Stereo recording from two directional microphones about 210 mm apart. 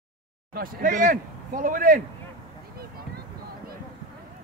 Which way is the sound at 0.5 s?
40° right (ahead or behind).